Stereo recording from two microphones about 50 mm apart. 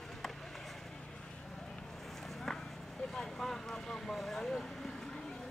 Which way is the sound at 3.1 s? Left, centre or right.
Centre.